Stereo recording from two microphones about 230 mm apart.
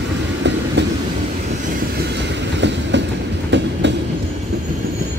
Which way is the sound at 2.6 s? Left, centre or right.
Right.